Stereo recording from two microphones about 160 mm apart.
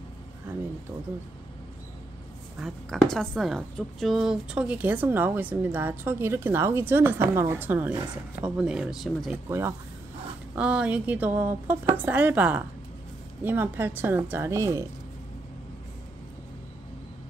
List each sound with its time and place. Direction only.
2.6 s speech: centre (ahead or behind)
9.5 s speech: 15° right (ahead or behind)